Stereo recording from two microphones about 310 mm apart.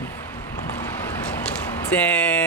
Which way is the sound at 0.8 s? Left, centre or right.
Centre.